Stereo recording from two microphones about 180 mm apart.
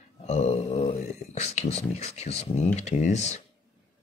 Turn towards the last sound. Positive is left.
turn(degrees=40)  # may be behind; listen again after turning